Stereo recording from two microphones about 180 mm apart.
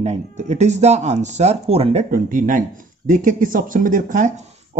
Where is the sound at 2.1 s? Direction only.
50° right (ahead or behind).